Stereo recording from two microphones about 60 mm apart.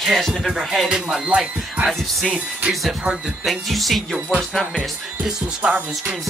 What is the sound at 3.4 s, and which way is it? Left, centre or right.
Speech, centre.